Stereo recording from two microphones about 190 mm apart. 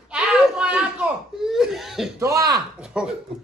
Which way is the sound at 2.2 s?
20° right (ahead or behind).